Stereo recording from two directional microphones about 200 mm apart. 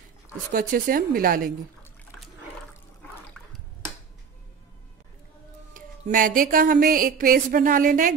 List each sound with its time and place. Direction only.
0.5 s a woman's voice: 45° right (ahead or behind)
2.7 s water: 5° left (ahead or behind)
5.8 s a woman's voice: 40° right (ahead or behind)